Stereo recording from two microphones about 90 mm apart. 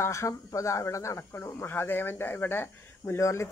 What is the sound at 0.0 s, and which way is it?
Speech, 35° left (ahead or behind).